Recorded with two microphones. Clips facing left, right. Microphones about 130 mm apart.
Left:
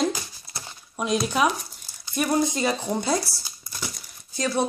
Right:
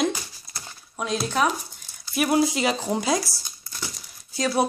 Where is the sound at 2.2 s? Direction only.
10° right (ahead or behind).